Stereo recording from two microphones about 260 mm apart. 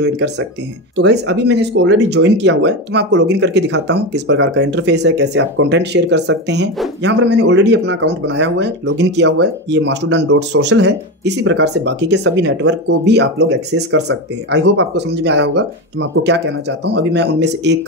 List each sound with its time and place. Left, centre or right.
0.0 s speech: right